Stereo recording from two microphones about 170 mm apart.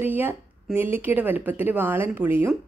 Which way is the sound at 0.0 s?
10° right (ahead or behind).